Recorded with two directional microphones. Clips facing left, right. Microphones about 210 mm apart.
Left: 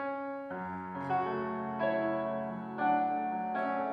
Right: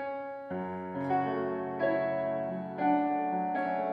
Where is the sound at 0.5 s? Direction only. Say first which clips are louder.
Right 5 dB; 20° right (ahead or behind).